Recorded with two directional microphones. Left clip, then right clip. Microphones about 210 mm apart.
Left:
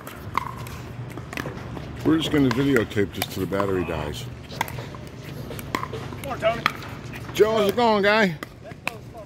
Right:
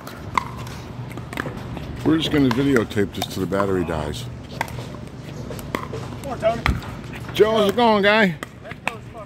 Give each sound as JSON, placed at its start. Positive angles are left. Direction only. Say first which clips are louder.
{"t": 0.4, "sound": "dog", "louder": "right 4 dB", "side_deg": 50}
{"t": 2.0, "sound": "speech", "louder": "right 2 dB", "side_deg": 0}
{"t": 4.6, "sound": "a sound", "louder": "right 1 dB", "side_deg": 50}
{"t": 6.4, "sound": "speech", "louder": "right 2 dB", "side_deg": -10}